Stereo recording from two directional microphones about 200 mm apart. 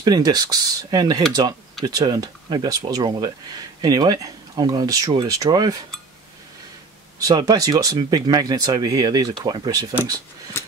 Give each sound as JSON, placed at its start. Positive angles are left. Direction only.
{"t": 0.0, "sound": "speech", "side_deg": -20}
{"t": 7.2, "sound": "speech", "side_deg": -20}